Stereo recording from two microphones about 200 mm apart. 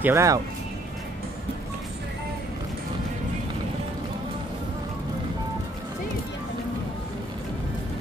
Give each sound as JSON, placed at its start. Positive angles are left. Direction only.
{"t": 0.0, "sound": "speech", "side_deg": -15}